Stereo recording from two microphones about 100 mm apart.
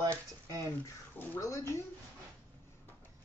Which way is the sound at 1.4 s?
30° left (ahead or behind).